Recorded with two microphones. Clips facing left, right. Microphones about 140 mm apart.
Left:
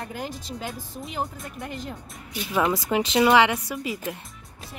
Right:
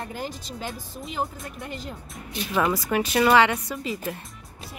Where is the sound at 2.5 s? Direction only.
15° left (ahead or behind).